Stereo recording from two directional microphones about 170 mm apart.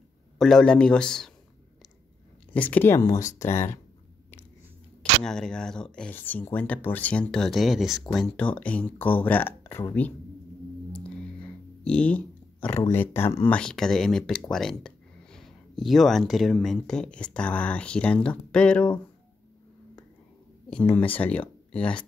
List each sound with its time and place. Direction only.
0.4 s speech: 5° left (ahead or behind)
2.5 s speech: 10° left (ahead or behind)
5.2 s speech: 5° left (ahead or behind)
10.9 s a sound: 5° left (ahead or behind)
12.9 s speech: 10° left (ahead or behind)
20.9 s speech: 30° left (ahead or behind)
21.2 s speech: 10° left (ahead or behind)